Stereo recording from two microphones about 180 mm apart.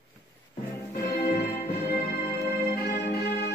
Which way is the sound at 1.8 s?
60° left (ahead or behind).